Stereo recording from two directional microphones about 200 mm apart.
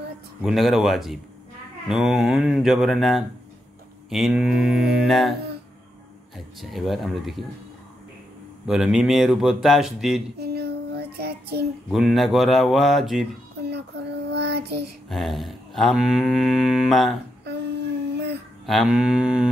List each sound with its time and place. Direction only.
0.4 s mantra: centre (ahead or behind)
6.3 s mantra: centre (ahead or behind)
8.6 s mantra: 5° right (ahead or behind)
10.4 s child singing: 55° right (ahead or behind)
11.9 s mantra: centre (ahead or behind)
13.6 s child singing: 55° right (ahead or behind)
15.0 s mantra: centre (ahead or behind)
17.5 s a sound: 55° right (ahead or behind)
18.7 s mantra: centre (ahead or behind)